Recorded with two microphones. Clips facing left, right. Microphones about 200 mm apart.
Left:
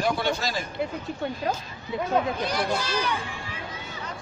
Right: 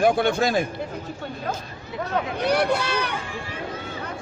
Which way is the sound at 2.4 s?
65° right (ahead or behind).